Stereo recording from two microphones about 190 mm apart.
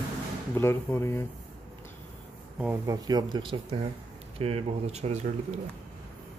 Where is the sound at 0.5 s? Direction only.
15° left (ahead or behind).